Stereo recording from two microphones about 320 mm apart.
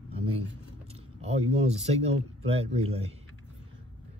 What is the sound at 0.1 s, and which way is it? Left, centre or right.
Keys jangling, centre.